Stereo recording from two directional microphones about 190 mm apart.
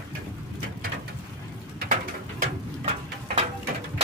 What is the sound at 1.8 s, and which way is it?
Bird, 45° right (ahead or behind).